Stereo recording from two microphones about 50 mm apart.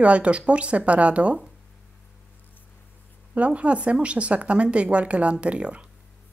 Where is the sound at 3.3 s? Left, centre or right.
Right.